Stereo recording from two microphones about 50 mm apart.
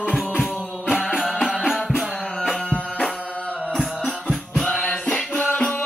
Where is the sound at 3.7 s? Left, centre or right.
Centre.